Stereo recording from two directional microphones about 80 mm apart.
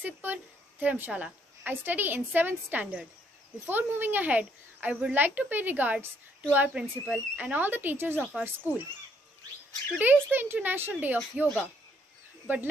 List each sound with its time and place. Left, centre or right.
0.0 s a woman's voice: right
6.5 s a woman's voice: centre
10.3 s a woman's voice: right